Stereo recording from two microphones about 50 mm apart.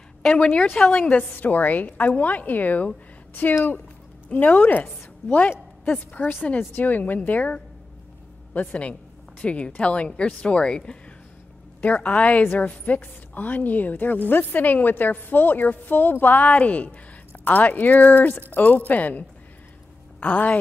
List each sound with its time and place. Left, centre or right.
0.3 s a woman's voice: left
4.3 s a woman's voice: left
6.2 s a woman's voice: left; by 11.0 s centre
11.8 s a woman's voice: left